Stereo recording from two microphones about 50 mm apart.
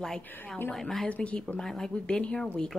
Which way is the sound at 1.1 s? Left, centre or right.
Left.